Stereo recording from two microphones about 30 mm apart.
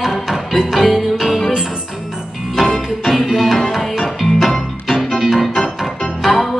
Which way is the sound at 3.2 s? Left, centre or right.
Centre.